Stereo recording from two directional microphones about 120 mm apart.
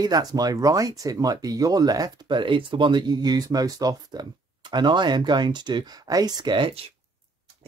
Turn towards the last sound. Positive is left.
turn(degrees=-40)  # may be behind; listen again after turning